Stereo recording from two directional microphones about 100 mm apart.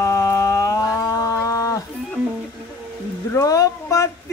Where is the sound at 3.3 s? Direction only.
35° left (ahead or behind).